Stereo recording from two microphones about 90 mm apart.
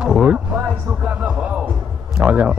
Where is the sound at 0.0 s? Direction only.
10° right (ahead or behind).